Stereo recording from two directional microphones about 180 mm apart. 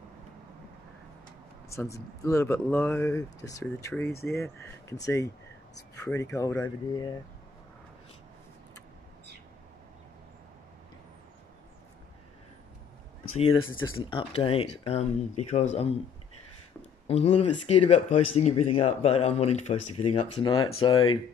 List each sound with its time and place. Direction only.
1.7 s speech: 15° left (ahead or behind)
13.5 s speech: 25° left (ahead or behind)
17.1 s speech: 35° left (ahead or behind)